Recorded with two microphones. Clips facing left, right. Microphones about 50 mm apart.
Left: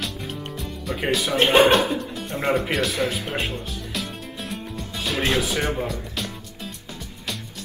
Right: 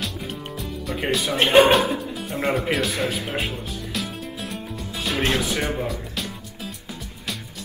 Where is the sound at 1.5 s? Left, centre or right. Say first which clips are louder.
Right 2 dB; centre.